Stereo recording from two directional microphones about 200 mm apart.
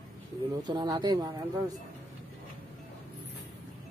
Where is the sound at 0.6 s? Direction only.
20° right (ahead or behind).